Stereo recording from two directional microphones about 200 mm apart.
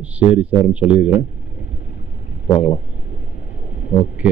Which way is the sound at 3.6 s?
35° left (ahead or behind).